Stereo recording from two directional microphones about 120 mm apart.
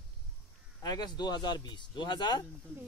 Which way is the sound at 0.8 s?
35° left (ahead or behind).